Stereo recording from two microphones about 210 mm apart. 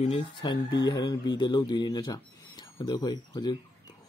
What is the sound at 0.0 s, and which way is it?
Speech, 25° left (ahead or behind).